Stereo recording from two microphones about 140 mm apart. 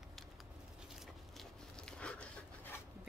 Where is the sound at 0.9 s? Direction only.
Centre (ahead or behind).